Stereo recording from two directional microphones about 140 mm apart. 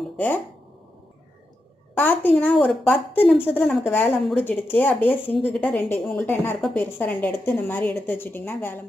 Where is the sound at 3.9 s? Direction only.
15° left (ahead or behind).